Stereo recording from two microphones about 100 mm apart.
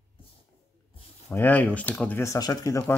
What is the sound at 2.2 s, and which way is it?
Speech, 35° left (ahead or behind).